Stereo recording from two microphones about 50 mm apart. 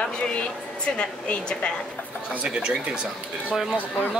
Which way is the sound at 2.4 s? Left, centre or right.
Centre.